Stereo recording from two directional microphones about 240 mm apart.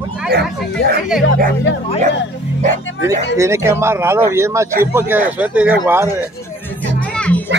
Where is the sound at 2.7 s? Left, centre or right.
Left.